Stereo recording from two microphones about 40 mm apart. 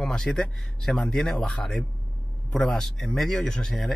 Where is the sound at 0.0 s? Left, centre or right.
Centre.